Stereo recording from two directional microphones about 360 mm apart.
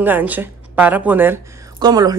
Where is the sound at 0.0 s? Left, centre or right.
Centre.